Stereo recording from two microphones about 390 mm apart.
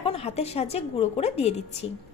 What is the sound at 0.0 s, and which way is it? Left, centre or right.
A woman's voice, centre.